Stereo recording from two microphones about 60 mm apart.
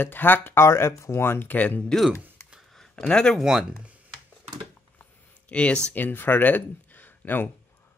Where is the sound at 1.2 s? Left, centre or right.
Left.